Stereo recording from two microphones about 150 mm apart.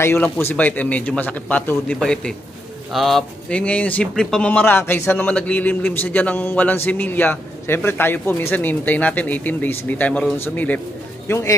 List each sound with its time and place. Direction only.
0.0 s speech: 15° left (ahead or behind)